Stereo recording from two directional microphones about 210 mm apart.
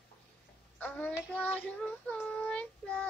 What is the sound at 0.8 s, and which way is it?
Child singing, 5° left (ahead or behind).